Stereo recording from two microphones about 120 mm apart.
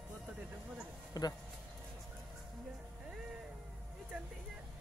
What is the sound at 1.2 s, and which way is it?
Speech, 30° left (ahead or behind).